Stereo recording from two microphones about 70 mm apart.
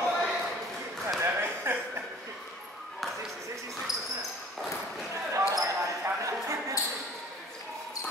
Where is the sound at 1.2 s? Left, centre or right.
Right.